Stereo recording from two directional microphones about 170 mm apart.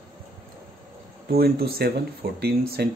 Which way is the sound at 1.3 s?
65° right (ahead or behind).